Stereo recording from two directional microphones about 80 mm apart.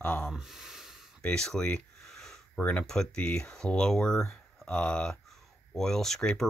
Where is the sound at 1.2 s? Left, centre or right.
Centre.